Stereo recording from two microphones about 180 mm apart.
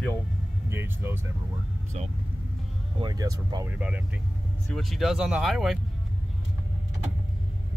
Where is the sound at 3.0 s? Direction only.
20° right (ahead or behind).